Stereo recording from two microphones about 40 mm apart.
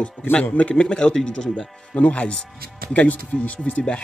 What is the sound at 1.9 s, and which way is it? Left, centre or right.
Speech, left.